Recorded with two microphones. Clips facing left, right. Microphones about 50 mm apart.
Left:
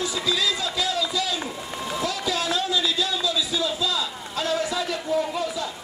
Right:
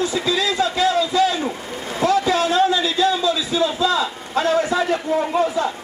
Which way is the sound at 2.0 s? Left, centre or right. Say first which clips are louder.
Right 10 dB; right.